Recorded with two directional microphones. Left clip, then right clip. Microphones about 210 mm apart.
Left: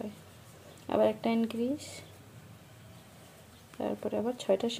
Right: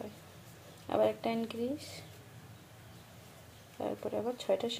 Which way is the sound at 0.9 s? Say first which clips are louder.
Left 3 dB; 25° left (ahead or behind).